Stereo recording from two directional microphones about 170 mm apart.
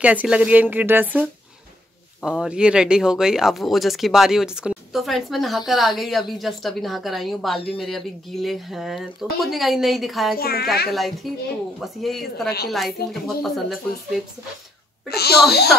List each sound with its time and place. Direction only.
0.0 s speech: 10° right (ahead or behind)
10.3 s a woman's voice: 65° left (ahead or behind)
10.9 s speech: centre (ahead or behind)
15.0 s a child's voice: 70° left (ahead or behind)